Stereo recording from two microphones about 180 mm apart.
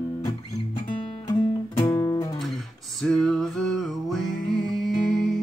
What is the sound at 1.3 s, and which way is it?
Music, 20° left (ahead or behind).